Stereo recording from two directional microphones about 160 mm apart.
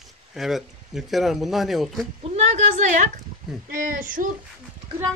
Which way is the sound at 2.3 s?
45° right (ahead or behind).